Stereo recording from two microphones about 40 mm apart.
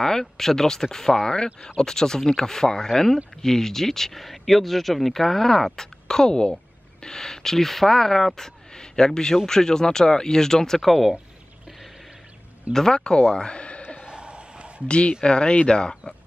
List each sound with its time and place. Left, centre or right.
0.0 s speech: centre
10.8 s speech: centre
12.7 s speech: centre
14.0 s a sound: right
14.9 s speech: left